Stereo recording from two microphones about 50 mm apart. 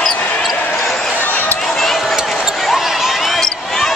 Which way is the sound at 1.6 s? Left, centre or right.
Centre.